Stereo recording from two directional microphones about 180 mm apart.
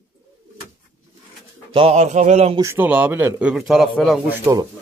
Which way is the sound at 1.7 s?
35° right (ahead or behind).